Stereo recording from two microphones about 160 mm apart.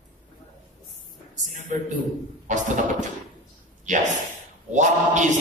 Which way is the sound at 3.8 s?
50° right (ahead or behind).